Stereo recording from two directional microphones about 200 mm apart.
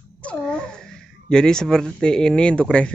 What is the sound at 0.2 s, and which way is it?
A child's voice, 5° left (ahead or behind).